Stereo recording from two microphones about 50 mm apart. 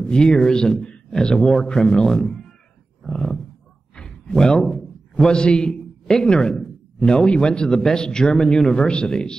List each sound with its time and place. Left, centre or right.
0.0 s speech: centre
3.0 s roaring cats: centre
3.9 s a sound: centre
5.1 s a man's voice: centre
6.5 s a sound: centre
7.2 s speech: centre